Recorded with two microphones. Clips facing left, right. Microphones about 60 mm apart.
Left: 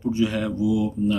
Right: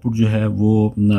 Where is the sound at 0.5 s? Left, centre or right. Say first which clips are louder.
Right 7 dB; right.